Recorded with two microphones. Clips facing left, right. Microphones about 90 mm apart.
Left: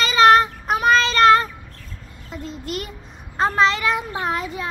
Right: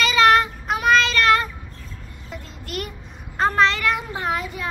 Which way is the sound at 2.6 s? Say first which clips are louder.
Right 3 dB; 25° left (ahead or behind).